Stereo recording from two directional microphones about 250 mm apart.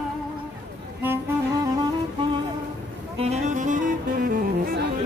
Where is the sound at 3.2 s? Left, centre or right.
Right.